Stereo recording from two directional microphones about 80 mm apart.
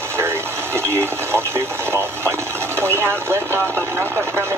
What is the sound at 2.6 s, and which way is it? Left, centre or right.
Speech, right.